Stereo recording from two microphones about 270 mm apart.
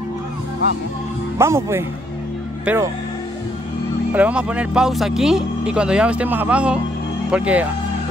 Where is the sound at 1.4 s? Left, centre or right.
Centre.